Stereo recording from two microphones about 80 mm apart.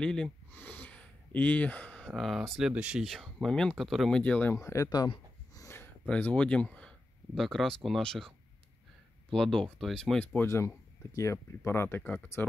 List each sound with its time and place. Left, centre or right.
0.0 s speech: centre
0.5 s a sound: left
2.0 s speech: centre
2.7 s speech: centre
3.0 s speech: centre
4.1 s speech: centre
4.6 s speech: left
4.8 s speech: left
6.0 s speech: centre
7.3 s speech: centre
9.3 s speech: centre
10.1 s speech: left
10.4 s speech: left